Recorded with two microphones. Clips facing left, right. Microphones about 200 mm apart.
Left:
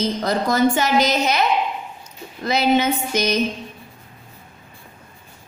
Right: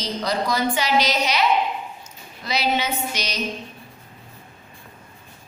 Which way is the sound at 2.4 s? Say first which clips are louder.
Left 6 dB; 50° left (ahead or behind).